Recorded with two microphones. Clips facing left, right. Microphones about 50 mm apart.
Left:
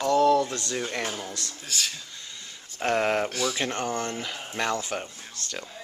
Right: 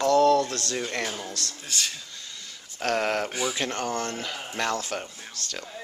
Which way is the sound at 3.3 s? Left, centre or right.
Centre.